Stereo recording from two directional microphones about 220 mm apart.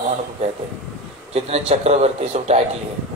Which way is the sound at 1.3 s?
30° right (ahead or behind).